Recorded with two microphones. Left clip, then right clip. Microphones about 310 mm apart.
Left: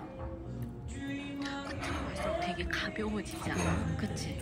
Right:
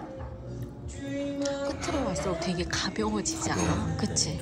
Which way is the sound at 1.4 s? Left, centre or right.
Centre.